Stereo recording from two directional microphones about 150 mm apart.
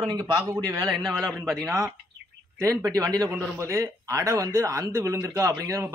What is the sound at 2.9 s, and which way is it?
Speech, 25° right (ahead or behind).